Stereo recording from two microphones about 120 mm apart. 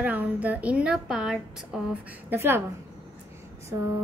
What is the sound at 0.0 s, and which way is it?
A woman's voice, 15° right (ahead or behind).